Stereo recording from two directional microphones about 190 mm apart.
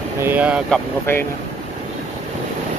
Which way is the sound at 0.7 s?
10° left (ahead or behind).